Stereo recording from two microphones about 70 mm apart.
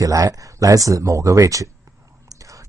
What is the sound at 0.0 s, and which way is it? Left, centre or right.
Speech, right.